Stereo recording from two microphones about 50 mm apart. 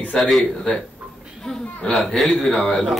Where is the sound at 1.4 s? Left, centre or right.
Centre.